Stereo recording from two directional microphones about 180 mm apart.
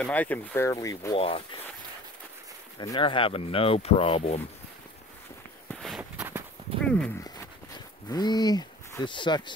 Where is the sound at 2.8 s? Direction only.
25° left (ahead or behind).